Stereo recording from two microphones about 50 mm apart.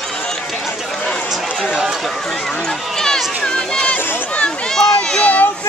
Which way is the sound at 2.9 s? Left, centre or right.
Centre.